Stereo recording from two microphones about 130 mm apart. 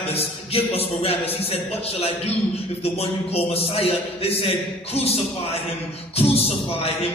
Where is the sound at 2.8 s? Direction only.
50° left (ahead or behind).